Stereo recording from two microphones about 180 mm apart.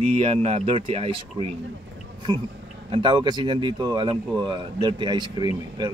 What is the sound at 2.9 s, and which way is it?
Speech, 25° right (ahead or behind).